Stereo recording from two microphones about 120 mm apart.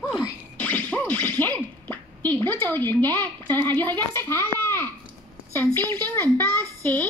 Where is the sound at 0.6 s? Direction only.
15° left (ahead or behind).